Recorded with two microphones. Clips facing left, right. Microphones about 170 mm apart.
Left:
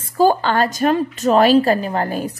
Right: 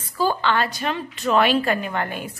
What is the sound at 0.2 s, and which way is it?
A woman's voice, 45° left (ahead or behind).